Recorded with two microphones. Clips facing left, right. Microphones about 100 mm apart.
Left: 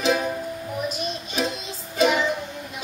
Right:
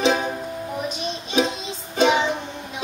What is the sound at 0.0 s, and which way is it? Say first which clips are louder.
Music: right 2 dB; centre (ahead or behind).